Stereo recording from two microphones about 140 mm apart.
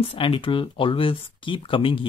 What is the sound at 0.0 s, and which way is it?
Speech, 40° left (ahead or behind).